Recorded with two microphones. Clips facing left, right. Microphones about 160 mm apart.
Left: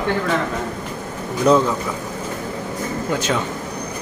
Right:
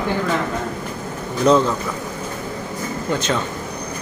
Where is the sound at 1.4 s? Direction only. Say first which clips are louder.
Even; 10° left (ahead or behind).